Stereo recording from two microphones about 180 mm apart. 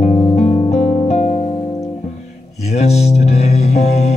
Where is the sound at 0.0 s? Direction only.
35° left (ahead or behind).